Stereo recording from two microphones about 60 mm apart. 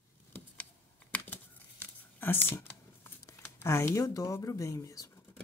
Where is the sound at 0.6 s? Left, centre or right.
Left.